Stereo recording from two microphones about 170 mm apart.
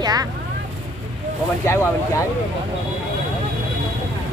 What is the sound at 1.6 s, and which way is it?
Speech, 15° left (ahead or behind).